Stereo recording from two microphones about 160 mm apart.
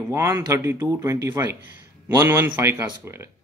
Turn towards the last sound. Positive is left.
turn(degrees=-15)  # may be behind; listen again after turning